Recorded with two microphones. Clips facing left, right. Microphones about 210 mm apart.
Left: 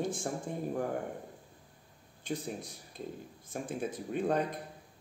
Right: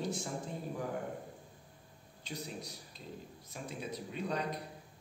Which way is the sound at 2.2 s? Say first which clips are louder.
Left 6 dB; 50° left (ahead or behind).